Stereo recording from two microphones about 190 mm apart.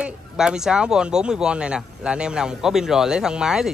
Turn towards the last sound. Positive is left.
turn(degrees=-5)  # may be behind; listen again after turning